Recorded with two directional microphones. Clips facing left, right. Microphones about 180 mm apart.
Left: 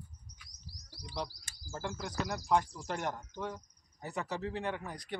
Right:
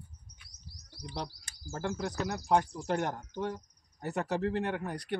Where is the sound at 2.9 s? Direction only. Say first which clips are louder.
Right 5 dB; 45° right (ahead or behind).